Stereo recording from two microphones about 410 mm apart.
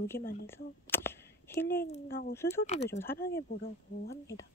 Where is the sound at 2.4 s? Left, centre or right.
Centre.